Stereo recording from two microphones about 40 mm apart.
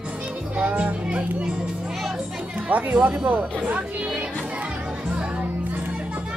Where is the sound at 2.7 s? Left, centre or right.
Right.